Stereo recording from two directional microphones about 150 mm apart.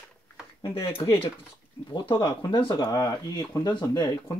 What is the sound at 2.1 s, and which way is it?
Speech, 25° left (ahead or behind).